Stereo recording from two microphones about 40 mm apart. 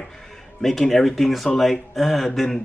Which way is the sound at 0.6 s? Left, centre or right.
Centre.